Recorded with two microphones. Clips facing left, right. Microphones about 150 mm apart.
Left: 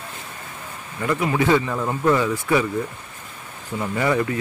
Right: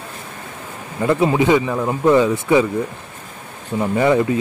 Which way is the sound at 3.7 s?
25° right (ahead or behind).